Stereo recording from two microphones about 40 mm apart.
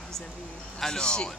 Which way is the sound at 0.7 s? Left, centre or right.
Centre.